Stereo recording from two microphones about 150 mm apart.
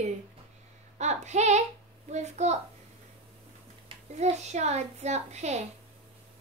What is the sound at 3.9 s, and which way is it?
A woman's voice, 45° right (ahead or behind).